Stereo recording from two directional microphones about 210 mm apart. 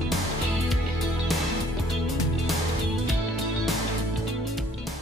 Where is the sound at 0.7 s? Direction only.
Centre (ahead or behind).